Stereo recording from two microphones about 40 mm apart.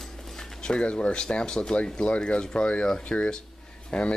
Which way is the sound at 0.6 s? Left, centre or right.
Left.